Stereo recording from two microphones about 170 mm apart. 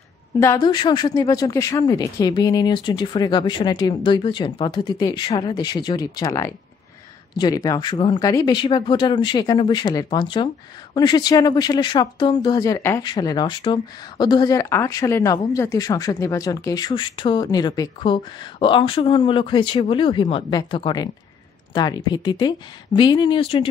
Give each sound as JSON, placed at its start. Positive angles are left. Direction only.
{"t": 0.4, "sound": "speech", "side_deg": 20}